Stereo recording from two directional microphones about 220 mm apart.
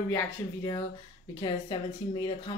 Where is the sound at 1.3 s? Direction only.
20° left (ahead or behind).